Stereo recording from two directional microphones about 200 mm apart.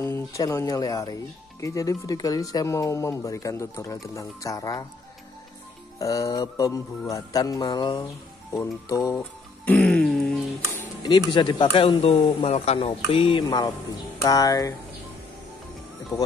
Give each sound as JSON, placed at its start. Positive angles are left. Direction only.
{"t": 0.0, "sound": "speech", "side_deg": 15}
{"t": 5.9, "sound": "speech", "side_deg": 15}
{"t": 10.7, "sound": "music", "side_deg": 20}
{"t": 11.7, "sound": "speech", "side_deg": 30}
{"t": 16.1, "sound": "speech", "side_deg": 15}